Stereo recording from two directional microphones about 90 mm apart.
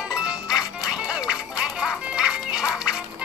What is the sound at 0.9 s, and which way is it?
Music, 10° right (ahead or behind).